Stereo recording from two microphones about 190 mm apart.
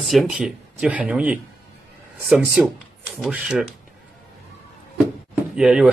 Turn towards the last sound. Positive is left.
turn(degrees=-5)  # may be behind; listen again after turning